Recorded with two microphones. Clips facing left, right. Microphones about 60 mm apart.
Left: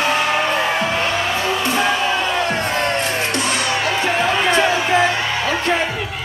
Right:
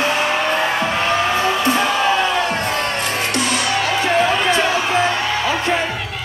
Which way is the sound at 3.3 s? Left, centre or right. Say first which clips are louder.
Right 1 dB; left.